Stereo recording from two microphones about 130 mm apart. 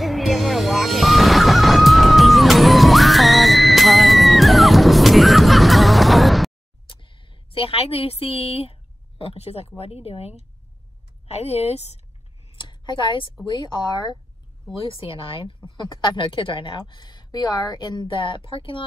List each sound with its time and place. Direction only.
0.0 s music: centre (ahead or behind)
6.9 s a sound: 40° left (ahead or behind)
9.2 s speech: 50° left (ahead or behind)
12.5 s a sound: 35° left (ahead or behind)
13.5 s speech: 35° left (ahead or behind)
14.8 s speech: 45° left (ahead or behind)